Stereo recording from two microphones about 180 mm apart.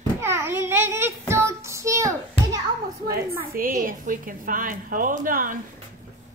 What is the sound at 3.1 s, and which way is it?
A woman's voice, 50° right (ahead or behind).